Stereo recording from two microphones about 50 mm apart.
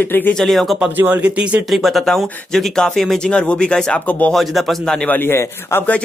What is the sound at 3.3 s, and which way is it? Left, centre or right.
Speech, left.